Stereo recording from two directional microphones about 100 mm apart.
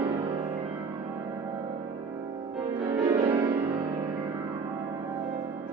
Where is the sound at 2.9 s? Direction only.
20° right (ahead or behind).